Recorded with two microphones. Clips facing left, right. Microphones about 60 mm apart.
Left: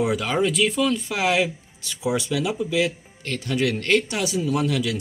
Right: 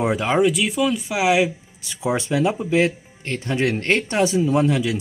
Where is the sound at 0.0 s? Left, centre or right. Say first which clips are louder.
Right 3 dB; right.